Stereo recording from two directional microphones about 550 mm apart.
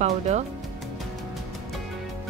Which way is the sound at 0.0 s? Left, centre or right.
Centre.